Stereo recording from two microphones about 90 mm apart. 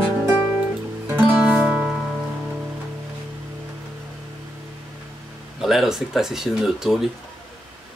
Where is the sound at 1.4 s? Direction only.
10° right (ahead or behind).